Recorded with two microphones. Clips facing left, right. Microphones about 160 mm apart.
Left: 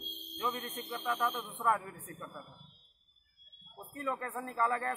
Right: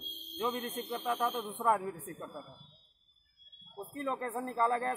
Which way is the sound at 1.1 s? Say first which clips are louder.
Right 1 dB; 20° right (ahead or behind).